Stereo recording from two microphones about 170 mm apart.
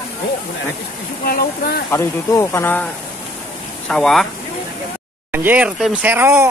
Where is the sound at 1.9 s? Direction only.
15° left (ahead or behind).